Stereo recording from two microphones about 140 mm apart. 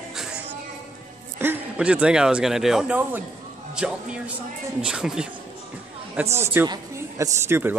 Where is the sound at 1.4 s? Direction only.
10° right (ahead or behind).